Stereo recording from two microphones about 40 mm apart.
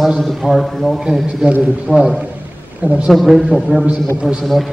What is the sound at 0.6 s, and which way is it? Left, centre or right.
A man's voice, centre.